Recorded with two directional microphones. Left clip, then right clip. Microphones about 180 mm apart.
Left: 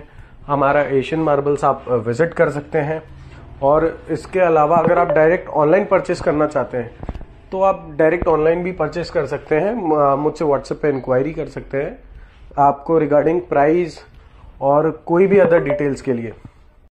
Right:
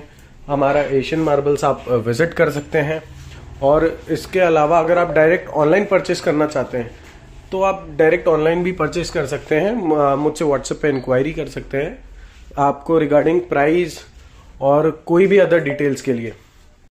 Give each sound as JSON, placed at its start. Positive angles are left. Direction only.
{"t": 0.5, "sound": "a man's voice", "side_deg": -10}
{"t": 14.6, "sound": "speech", "side_deg": -20}